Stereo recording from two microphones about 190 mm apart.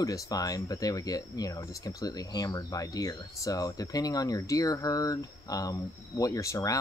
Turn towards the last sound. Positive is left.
turn(degrees=15)  # may be behind; listen again after turning